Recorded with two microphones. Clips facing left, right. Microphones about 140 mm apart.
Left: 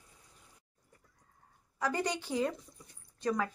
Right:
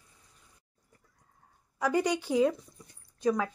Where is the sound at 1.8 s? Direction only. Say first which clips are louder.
Right 6 dB; 10° right (ahead or behind).